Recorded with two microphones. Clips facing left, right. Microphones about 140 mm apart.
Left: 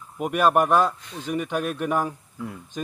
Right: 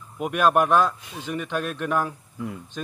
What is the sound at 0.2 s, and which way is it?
A man's voice, centre (ahead or behind).